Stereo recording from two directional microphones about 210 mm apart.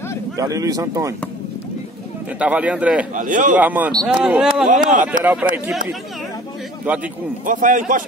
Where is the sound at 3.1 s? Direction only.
40° right (ahead or behind).